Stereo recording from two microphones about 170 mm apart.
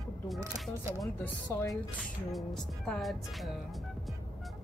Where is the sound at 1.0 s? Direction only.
15° left (ahead or behind).